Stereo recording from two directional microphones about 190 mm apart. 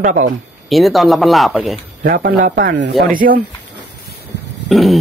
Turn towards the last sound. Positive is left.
turn(degrees=0)  # may be behind; listen again after turning